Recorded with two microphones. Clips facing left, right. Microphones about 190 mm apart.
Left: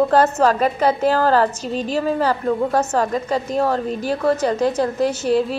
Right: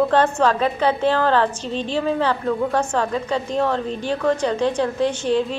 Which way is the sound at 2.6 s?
10° left (ahead or behind).